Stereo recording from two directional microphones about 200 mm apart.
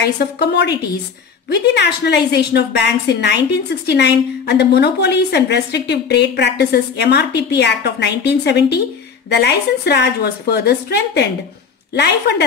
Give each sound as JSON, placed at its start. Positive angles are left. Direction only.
{"t": 0.0, "sound": "a woman's voice", "side_deg": 55}